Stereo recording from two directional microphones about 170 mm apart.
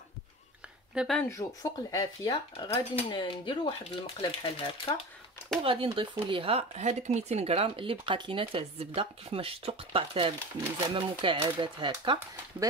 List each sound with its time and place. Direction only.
0.9 s speech: centre (ahead or behind)
1.3 s speech: 20° left (ahead or behind)
5.6 s speech: 30° right (ahead or behind)